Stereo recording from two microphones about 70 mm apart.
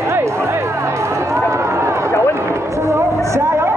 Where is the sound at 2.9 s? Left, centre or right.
Right.